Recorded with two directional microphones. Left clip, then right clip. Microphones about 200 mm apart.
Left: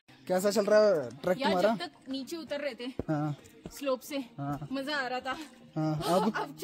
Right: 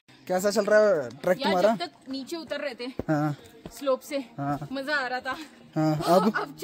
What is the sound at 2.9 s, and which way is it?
Speech, 30° right (ahead or behind).